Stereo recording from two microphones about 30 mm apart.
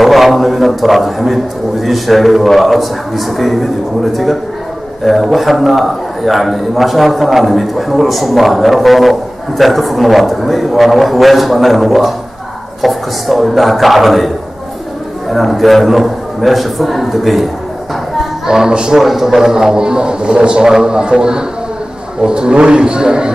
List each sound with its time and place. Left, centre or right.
0.0 s a man's voice: centre
5.3 s a man's voice: centre
15.3 s a man's voice: centre
18.7 s a man's voice: right
18.9 s a man's voice: centre; by 23.3 s right